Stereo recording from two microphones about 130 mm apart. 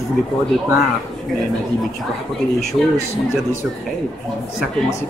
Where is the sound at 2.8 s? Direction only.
Centre (ahead or behind).